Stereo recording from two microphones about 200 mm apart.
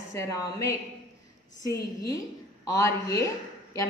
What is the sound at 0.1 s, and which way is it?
Speech, 15° left (ahead or behind).